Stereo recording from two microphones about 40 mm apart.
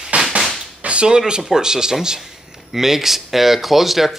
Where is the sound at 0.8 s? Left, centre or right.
Right.